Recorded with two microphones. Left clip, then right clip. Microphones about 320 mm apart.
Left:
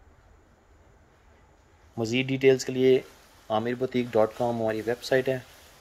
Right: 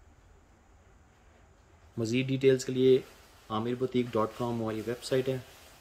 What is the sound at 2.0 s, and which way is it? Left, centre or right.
Speech, centre.